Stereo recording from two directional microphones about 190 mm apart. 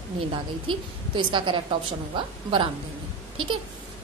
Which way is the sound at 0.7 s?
25° right (ahead or behind).